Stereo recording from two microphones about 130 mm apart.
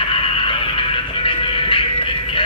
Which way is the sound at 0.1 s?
40° left (ahead or behind).